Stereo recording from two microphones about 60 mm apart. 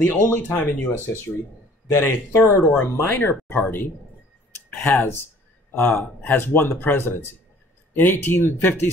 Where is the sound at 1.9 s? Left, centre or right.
Left.